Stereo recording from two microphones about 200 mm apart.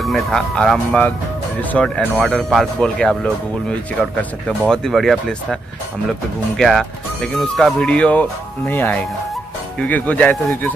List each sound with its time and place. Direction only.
0.0 s speech: centre (ahead or behind)